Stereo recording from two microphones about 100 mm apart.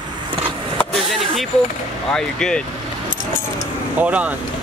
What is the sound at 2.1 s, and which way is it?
Speech, 5° left (ahead or behind).